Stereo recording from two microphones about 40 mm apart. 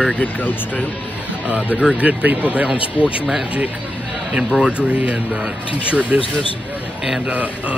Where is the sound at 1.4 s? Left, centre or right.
Right.